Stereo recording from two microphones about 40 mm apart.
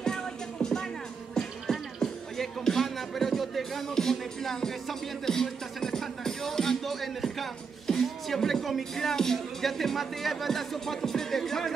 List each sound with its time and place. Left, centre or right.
0.0 s music: centre